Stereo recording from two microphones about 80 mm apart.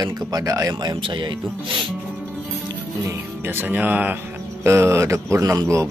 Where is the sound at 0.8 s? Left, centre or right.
Right.